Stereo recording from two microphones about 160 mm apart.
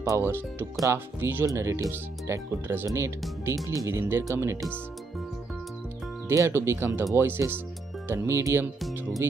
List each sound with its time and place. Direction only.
0.0 s speech: 15° right (ahead or behind)
6.2 s speech: 15° right (ahead or behind)